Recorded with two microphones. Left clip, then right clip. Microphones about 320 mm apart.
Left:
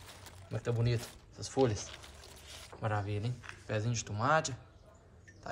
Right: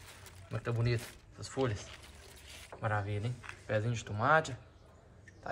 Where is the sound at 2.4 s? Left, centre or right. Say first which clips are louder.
Left 1 dB; centre.